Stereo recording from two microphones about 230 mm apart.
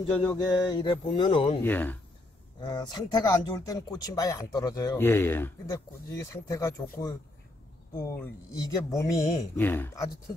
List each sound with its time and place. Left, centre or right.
0.3 s a sound: centre
1.6 s speech: centre
2.6 s speech: centre